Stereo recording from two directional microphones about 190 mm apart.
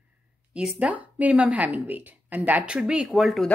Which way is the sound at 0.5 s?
5° right (ahead or behind).